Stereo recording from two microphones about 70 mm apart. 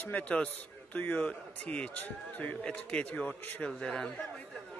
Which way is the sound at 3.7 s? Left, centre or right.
Centre.